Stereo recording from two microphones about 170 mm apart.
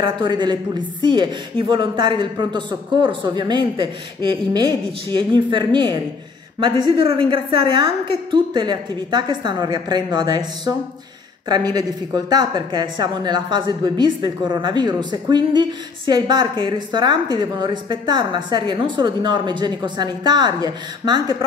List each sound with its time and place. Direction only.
0.0 s speech: 25° right (ahead or behind)